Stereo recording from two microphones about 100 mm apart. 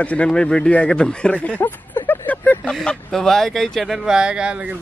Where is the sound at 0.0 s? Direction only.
10° left (ahead or behind).